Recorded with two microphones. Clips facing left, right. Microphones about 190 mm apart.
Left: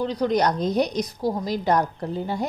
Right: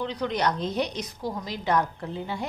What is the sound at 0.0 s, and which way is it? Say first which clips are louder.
A woman's voice: left 5 dB; 40° left (ahead or behind).